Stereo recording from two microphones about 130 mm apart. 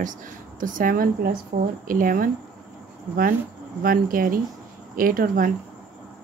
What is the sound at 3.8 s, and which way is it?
Speech, 90° right.